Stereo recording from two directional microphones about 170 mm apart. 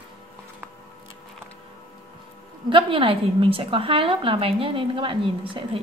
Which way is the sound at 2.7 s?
30° right (ahead or behind).